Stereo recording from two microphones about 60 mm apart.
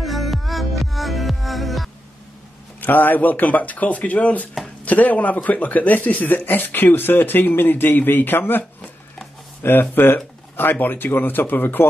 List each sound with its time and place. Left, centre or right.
0.0 s music: centre
2.8 s speech: left